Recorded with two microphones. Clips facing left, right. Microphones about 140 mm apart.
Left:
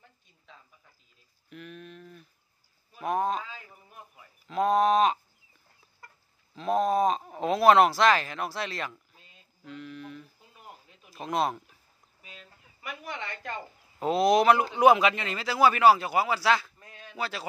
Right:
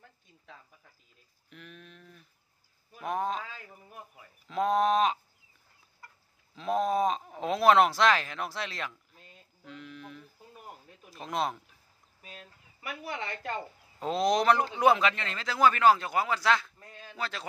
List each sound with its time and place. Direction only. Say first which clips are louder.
1.5 s a sound: left 6 dB; centre (ahead or behind)
3.0 s speech: left 4 dB; centre (ahead or behind)
4.5 s speech: left 3 dB; centre (ahead or behind)
6.5 s speech: left 3 dB; centre (ahead or behind)
9.7 s a sound: left 4 dB; centre (ahead or behind)
11.1 s speech: left 4 dB; centre (ahead or behind)
13.1 s speech: right 2 dB; 40° right (ahead or behind)
13.9 s a man's voice: left 4 dB; 5° left (ahead or behind)